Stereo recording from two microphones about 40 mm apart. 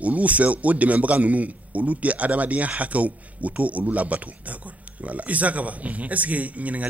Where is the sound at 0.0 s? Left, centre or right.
Right.